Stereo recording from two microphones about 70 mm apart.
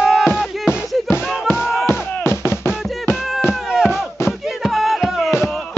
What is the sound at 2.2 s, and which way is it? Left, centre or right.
Music, left.